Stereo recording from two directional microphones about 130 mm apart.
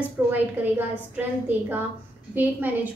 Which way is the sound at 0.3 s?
15° right (ahead or behind).